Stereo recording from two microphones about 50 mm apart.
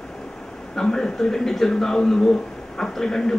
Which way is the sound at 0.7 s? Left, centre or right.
Centre.